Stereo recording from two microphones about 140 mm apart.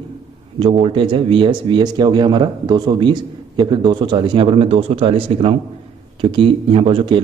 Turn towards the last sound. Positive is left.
turn(degrees=-35)  # may be behind; listen again after turning